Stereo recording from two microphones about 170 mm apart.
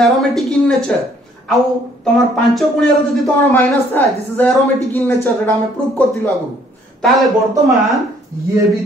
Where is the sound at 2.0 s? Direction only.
Centre (ahead or behind).